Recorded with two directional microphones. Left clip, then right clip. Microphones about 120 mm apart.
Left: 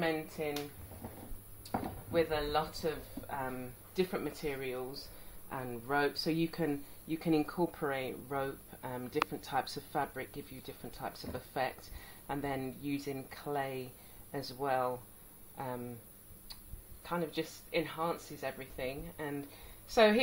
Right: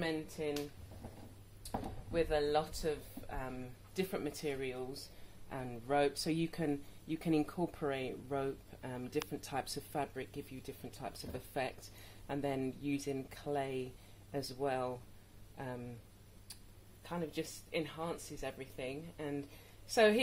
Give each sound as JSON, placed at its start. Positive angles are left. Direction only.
{"t": 0.4, "sound": "speech", "side_deg": -40}
{"t": 2.1, "sound": "speech", "side_deg": -35}
{"t": 5.5, "sound": "speech", "side_deg": -55}
{"t": 17.0, "sound": "speech", "side_deg": -45}